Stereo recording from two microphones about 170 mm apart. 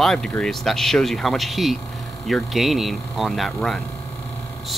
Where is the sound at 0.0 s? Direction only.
5° left (ahead or behind).